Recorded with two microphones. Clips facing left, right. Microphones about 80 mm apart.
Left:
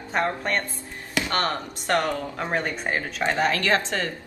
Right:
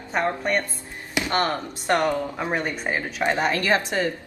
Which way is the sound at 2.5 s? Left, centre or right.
Centre.